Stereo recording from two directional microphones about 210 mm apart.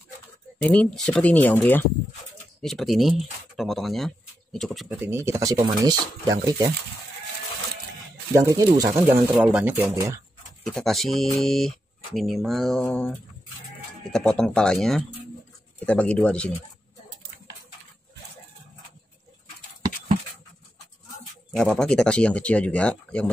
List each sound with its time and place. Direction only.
0.6 s speech: 5° left (ahead or behind)
5.0 s speech: 10° right (ahead or behind)
8.3 s speech: 15° right (ahead or behind)
10.6 s speech: centre (ahead or behind)
21.5 s speech: 5° left (ahead or behind)